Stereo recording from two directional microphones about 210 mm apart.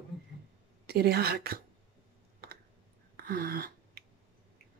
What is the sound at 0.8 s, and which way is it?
Speech, 50° right (ahead or behind).